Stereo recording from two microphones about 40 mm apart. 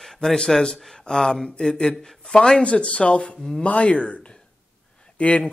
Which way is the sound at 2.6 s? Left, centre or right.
Left.